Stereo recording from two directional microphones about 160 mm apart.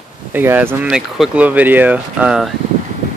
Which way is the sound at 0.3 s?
10° right (ahead or behind).